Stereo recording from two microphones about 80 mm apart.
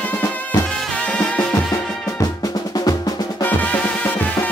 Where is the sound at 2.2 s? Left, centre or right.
Left.